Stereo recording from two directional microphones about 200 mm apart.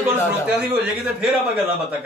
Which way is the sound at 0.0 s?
10° right (ahead or behind).